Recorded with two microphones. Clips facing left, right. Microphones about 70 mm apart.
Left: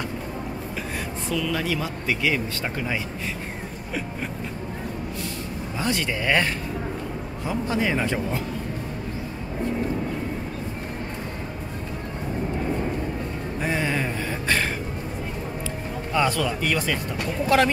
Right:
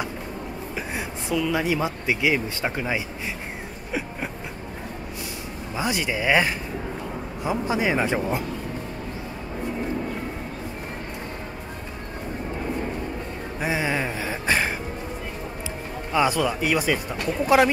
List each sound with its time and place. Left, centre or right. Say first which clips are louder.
1.3 s speech: right 3 dB; centre
5.8 s speech: right 1 dB; centre
13.6 s a sound: right 1 dB; centre
16.1 s speech: right 2 dB; centre